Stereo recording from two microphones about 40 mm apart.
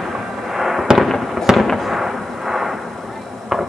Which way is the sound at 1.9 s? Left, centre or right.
Centre.